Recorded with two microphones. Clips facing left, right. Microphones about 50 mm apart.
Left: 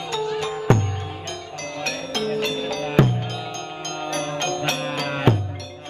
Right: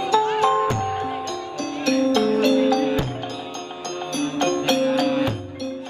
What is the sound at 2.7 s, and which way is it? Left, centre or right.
Music, left.